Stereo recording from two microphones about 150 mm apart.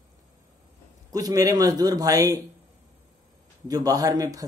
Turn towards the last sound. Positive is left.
turn(degrees=-25)  # may be behind; listen again after turning